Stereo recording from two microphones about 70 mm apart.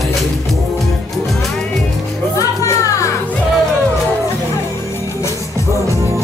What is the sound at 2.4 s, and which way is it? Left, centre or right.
Music, left.